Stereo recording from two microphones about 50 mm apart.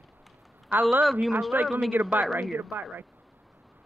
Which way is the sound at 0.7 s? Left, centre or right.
Right.